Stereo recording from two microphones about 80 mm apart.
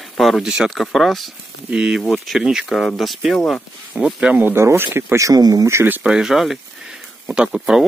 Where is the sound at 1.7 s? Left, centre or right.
Centre.